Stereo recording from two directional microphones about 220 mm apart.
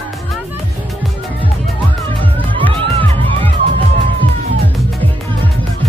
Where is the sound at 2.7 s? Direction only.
25° right (ahead or behind).